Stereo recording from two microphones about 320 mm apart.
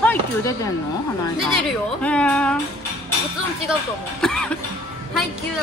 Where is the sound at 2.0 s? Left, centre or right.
Centre.